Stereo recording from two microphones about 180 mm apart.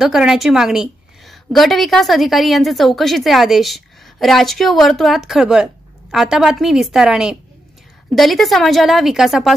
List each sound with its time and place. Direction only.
0.0 s a woman's voice: 5° right (ahead or behind)